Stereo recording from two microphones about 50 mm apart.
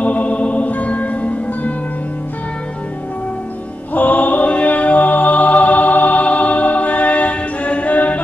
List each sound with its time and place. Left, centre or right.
0.0 s music: left
3.9 s music: left